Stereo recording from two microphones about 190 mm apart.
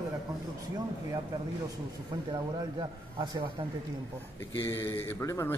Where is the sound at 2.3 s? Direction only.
25° right (ahead or behind).